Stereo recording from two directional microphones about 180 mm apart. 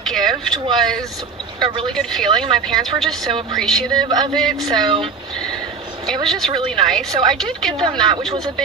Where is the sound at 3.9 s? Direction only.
25° right (ahead or behind).